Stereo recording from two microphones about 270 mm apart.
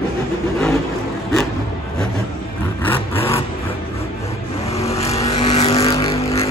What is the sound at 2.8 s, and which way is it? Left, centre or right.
Vehicle, centre.